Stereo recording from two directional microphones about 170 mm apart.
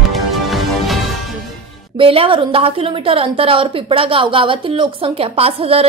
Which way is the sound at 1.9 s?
30° right (ahead or behind).